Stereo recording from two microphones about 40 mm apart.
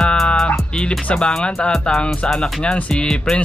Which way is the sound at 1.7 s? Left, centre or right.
Centre.